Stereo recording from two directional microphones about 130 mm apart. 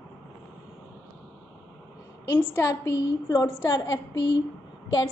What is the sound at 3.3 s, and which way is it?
Speech, 30° left (ahead or behind).